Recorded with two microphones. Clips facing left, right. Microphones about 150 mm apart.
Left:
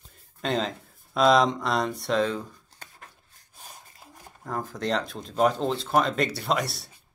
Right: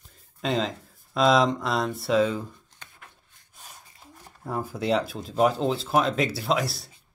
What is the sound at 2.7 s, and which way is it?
Rub, 40° left (ahead or behind).